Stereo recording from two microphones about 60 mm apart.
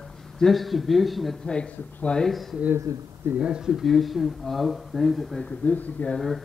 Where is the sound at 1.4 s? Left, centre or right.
Centre.